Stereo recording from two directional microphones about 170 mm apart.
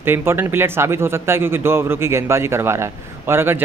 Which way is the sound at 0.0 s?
15° right (ahead or behind).